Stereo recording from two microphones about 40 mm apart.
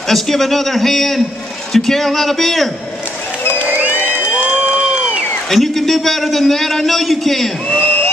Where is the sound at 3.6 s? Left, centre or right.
Right.